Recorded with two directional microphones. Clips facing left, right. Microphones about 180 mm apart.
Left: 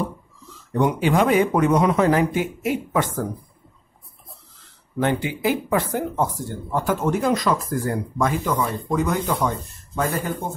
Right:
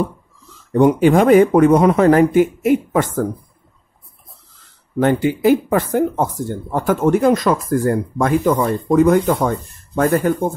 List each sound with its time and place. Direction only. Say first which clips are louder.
0.7 s speech: right 7 dB; 50° right (ahead or behind)
4.9 s speech: right 7 dB; 45° right (ahead or behind)